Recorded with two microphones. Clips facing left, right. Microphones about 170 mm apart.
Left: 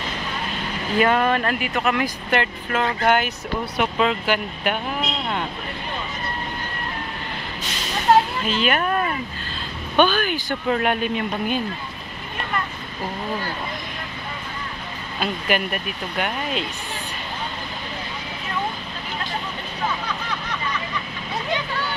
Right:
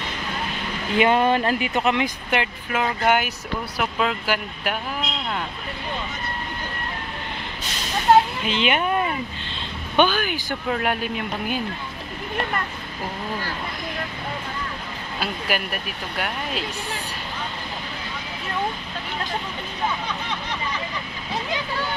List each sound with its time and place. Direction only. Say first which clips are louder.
0.9 s speech: right 1 dB; 25° right (ahead or behind)
2.3 s speech: left 2 dB; 10° right (ahead or behind)
8.5 s speech: left 1 dB; 20° right (ahead or behind)
15.1 s speech: left 3 dB; 5° right (ahead or behind)